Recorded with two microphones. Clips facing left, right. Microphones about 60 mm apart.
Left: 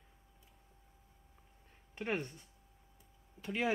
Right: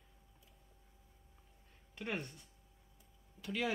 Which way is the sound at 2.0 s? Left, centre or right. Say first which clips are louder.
Left 4 dB; left.